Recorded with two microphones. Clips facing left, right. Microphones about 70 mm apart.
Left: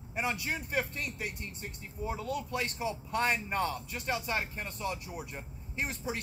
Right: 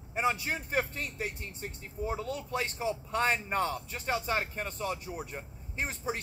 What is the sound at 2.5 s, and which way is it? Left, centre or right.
Speech, right.